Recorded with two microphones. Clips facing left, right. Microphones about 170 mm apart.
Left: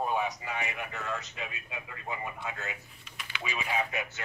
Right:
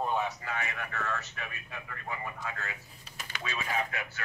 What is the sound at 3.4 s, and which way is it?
Speech, 10° left (ahead or behind).